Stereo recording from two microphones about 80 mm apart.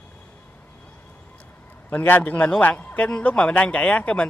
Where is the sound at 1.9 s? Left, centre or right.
Left.